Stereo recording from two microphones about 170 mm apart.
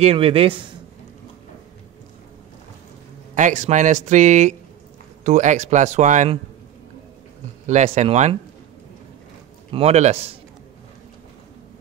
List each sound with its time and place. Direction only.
0.0 s speech: 35° right (ahead or behind)
3.3 s speech: 45° right (ahead or behind)
7.6 s speech: 45° right (ahead or behind)
9.7 s speech: 35° right (ahead or behind)